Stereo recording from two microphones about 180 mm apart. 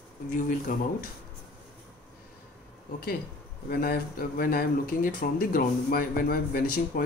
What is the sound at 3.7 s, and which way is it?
Speech, 55° left (ahead or behind).